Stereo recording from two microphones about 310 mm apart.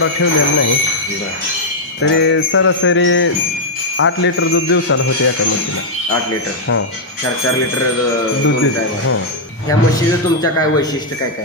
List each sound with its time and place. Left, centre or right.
0.0 s jingle bell: left
2.0 s jingle bell: left
10.4 s speech: centre